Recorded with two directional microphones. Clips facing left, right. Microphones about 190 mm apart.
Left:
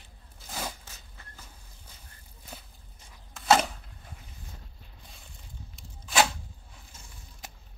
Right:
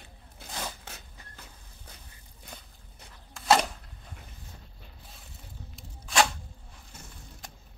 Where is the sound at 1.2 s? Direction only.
15° right (ahead or behind).